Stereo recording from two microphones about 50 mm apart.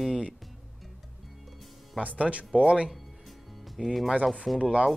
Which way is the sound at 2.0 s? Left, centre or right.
Right.